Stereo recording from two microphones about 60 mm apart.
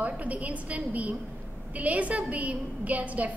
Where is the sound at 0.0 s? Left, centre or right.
Right.